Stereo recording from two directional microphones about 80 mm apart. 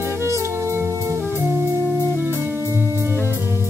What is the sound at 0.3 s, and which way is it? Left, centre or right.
Music, right.